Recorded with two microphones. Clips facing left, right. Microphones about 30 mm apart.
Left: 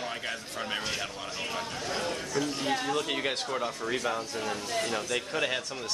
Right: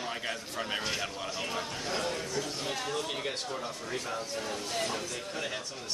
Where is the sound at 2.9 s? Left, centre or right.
Left.